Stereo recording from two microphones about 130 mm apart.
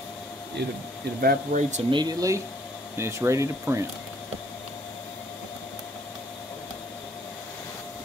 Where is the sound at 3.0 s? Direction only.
20° right (ahead or behind).